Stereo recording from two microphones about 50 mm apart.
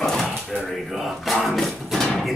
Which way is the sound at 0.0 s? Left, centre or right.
Centre.